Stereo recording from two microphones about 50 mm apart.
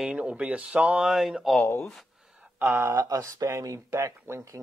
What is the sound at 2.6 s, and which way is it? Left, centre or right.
Speech, right.